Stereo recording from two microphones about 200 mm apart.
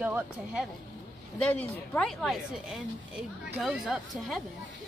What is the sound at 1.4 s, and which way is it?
Speech, 5° left (ahead or behind).